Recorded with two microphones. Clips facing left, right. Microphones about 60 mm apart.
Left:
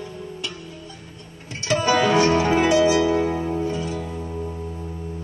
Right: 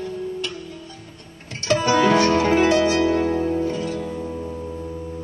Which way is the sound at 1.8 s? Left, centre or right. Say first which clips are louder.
Right 1 dB; left.